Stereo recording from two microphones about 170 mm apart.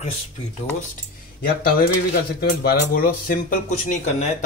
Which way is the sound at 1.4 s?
60° left (ahead or behind).